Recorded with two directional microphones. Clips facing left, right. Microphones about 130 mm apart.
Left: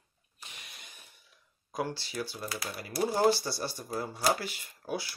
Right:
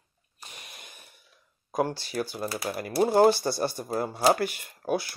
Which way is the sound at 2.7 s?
55° right (ahead or behind).